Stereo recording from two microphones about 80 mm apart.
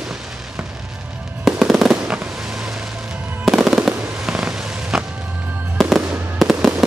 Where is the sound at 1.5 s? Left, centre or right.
Centre.